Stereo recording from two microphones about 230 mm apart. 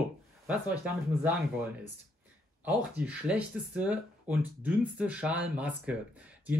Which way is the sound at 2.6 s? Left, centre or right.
Centre.